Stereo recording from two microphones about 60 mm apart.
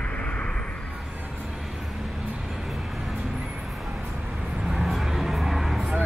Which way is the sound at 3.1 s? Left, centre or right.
Centre.